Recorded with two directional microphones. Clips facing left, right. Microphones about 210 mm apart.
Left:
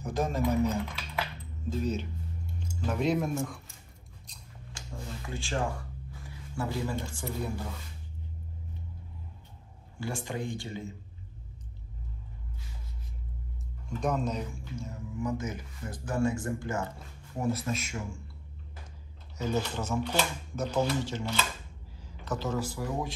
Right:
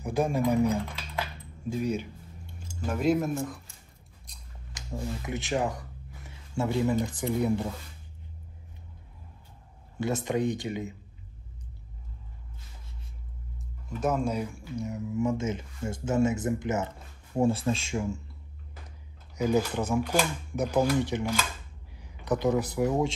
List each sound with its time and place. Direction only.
0.0 s speech: 10° right (ahead or behind)
4.7 s speech: 20° right (ahead or behind)
9.9 s speech: 20° right (ahead or behind)
13.8 s speech: 5° right (ahead or behind); by 18.2 s 30° right (ahead or behind)
19.3 s speech: 15° right (ahead or behind)